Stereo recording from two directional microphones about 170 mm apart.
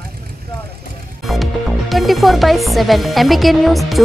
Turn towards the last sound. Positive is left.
turn(degrees=0)  # may be behind; listen again after turning